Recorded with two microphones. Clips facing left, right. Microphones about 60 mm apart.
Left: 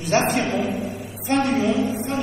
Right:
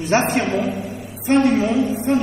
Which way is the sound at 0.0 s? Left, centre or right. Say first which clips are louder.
Right 2 dB; right.